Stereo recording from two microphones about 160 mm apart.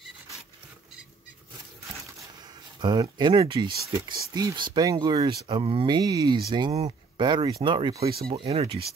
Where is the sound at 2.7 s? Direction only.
30° right (ahead or behind).